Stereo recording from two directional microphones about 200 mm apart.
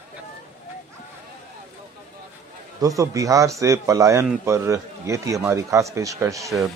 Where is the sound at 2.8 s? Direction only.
15° right (ahead or behind).